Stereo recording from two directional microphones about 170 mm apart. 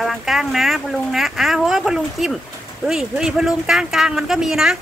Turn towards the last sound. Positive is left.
turn(degrees=-5)  # may be behind; listen again after turning